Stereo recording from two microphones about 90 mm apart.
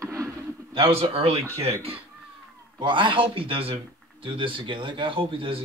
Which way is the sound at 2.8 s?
65° right (ahead or behind).